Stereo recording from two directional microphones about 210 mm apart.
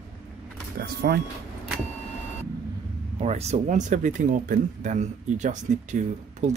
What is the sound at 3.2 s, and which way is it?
Speech, 30° right (ahead or behind).